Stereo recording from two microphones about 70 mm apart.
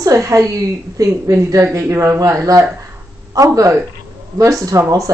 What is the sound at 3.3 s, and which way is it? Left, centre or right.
A woman's voice, right.